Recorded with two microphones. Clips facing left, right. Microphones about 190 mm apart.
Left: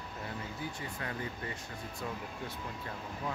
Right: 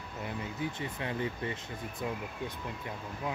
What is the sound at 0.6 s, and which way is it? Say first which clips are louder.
Speech: right 4 dB; 20° right (ahead or behind).